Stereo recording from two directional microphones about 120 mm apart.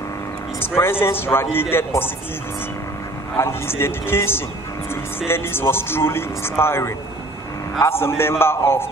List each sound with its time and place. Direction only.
0.6 s speech: 20° left (ahead or behind)
3.3 s speech: 20° left (ahead or behind)